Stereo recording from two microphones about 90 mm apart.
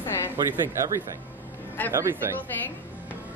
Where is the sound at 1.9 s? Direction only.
35° right (ahead or behind).